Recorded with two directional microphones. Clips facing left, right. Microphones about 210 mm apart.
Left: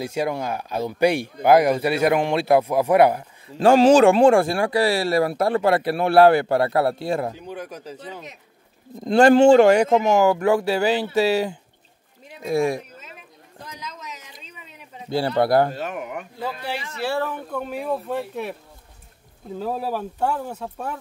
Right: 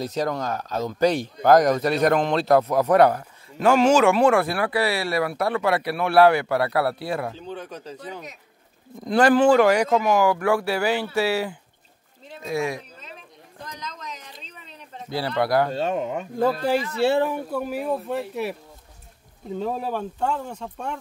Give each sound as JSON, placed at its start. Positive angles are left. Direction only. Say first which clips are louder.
{"t": 0.0, "sound": "speech", "louder": "left 1 dB", "side_deg": 10}
{"t": 3.5, "sound": "speech", "louder": "left 4 dB", "side_deg": 30}
{"t": 7.3, "sound": "a man's voice", "louder": "left 1 dB", "side_deg": 10}
{"t": 8.0, "sound": "speech", "louder": "even", "side_deg": 25}
{"t": 12.4, "sound": "speech", "louder": "left 5 dB", "side_deg": 30}
{"t": 13.0, "sound": "a sound", "louder": "right 1 dB", "side_deg": 5}
{"t": 15.0, "sound": "speech", "louder": "left 4 dB", "side_deg": 25}
{"t": 15.7, "sound": "speech", "louder": "right 5 dB", "side_deg": -25}
{"t": 16.3, "sound": "speech", "louder": "right 10 dB", "side_deg": -45}
{"t": 17.0, "sound": "speech", "louder": "right 2 dB", "side_deg": -20}
{"t": 19.6, "sound": "speech", "louder": "left 1 dB", "side_deg": 5}